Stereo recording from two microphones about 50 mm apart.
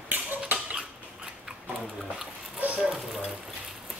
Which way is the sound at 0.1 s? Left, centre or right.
Right.